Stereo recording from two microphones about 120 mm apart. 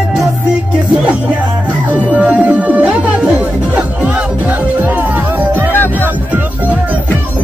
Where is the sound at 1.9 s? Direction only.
10° right (ahead or behind).